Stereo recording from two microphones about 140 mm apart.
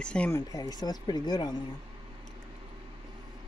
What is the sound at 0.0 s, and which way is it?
Speech, 10° left (ahead or behind).